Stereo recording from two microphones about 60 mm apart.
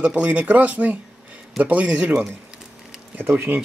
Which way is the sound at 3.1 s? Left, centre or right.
Right.